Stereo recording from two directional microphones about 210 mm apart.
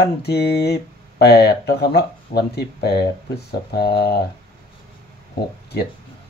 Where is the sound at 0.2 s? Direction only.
50° left (ahead or behind).